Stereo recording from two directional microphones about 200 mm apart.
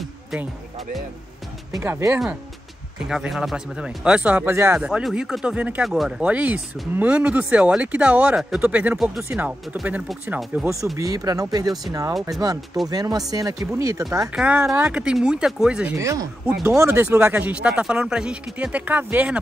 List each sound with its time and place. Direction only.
1.8 s speech: 15° right (ahead or behind)
16.0 s speech: 15° right (ahead or behind)